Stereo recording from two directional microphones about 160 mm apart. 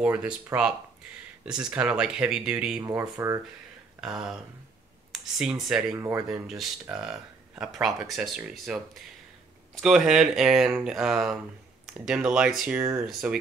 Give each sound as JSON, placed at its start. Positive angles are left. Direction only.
{"t": 0.0, "sound": "speech", "side_deg": -10}
{"t": 2.8, "sound": "speech", "side_deg": -20}
{"t": 4.0, "sound": "speech", "side_deg": -5}
{"t": 5.4, "sound": "speech", "side_deg": -5}
{"t": 5.9, "sound": "speech", "side_deg": -20}
{"t": 6.2, "sound": "speech", "side_deg": 0}